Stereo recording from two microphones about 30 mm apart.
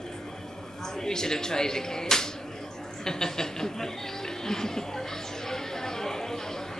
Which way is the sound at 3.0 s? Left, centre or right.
Centre.